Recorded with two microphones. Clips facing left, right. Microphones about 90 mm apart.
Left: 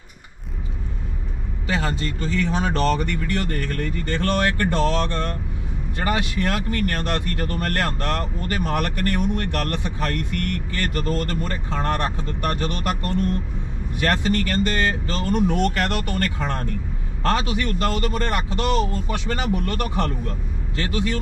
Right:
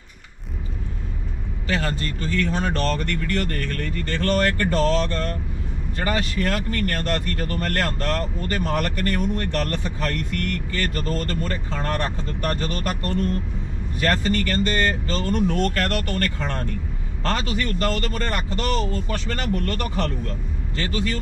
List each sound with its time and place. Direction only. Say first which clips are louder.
1.7 s speech: left 1 dB; 10° left (ahead or behind)